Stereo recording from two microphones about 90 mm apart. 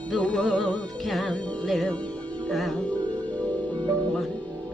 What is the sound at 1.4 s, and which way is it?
Music, 15° left (ahead or behind).